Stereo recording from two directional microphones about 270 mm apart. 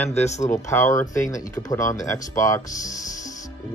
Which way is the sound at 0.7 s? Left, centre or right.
Centre.